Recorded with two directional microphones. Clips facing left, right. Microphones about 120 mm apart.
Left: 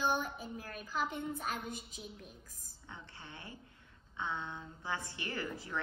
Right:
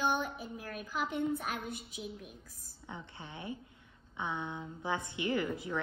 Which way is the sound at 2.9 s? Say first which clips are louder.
Right 5 dB; 20° right (ahead or behind).